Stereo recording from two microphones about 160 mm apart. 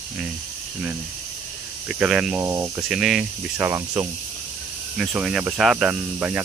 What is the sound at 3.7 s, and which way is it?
Speech, 20° right (ahead or behind).